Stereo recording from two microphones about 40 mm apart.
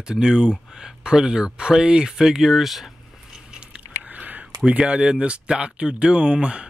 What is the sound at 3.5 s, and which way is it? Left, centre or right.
Biting, right.